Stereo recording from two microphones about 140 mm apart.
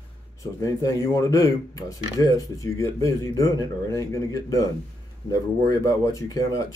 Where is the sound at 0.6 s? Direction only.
25° left (ahead or behind).